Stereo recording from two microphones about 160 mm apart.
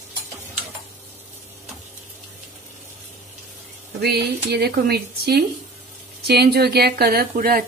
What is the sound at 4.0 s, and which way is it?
Speech, 90° right.